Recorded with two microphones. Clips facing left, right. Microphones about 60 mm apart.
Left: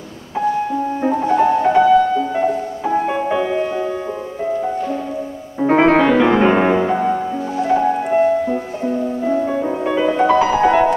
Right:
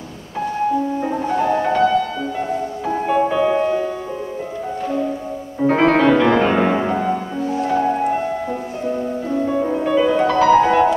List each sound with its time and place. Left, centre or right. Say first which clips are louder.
1.6 s music: left 4 dB; centre
5.6 s music: left 2 dB; centre
6.9 s music: left 3 dB; centre